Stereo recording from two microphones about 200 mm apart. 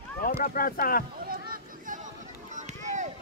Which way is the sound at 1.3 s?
45° right (ahead or behind).